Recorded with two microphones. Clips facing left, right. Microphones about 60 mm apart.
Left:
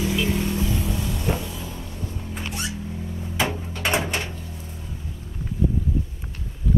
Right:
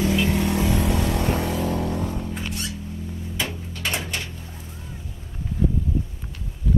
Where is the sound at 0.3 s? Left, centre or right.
Right.